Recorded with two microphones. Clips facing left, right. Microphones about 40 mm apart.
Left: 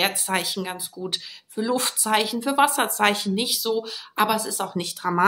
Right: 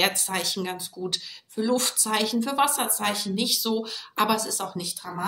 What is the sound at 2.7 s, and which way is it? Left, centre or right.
Speech, left.